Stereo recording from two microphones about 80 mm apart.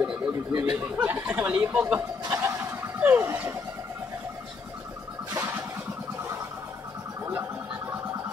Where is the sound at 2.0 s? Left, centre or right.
Right.